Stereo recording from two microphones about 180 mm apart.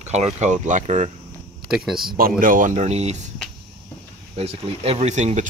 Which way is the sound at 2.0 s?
55° right (ahead or behind).